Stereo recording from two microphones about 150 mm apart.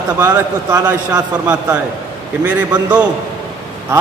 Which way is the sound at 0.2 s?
15° right (ahead or behind).